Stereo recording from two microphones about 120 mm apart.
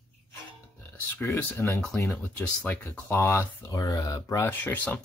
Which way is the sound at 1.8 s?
5° left (ahead or behind).